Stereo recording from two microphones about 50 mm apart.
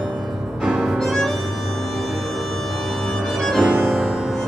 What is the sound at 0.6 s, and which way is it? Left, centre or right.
Music, centre.